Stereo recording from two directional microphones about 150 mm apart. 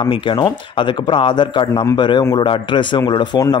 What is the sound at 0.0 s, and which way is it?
A man's voice, 30° left (ahead or behind).